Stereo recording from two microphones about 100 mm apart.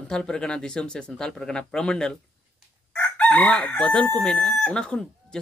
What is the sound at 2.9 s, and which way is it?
Chicken, 10° left (ahead or behind).